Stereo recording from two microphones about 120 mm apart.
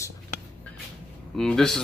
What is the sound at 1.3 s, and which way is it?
Speech, 5° left (ahead or behind).